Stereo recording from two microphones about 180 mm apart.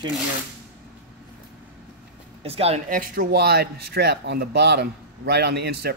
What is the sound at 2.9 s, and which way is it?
Speech, 50° right (ahead or behind).